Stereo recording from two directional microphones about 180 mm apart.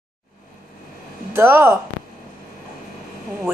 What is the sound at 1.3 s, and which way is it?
Speech, 10° right (ahead or behind).